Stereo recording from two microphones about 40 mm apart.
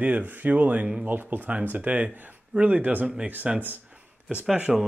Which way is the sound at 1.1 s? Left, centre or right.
Right.